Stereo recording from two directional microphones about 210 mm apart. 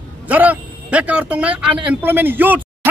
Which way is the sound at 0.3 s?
5° right (ahead or behind).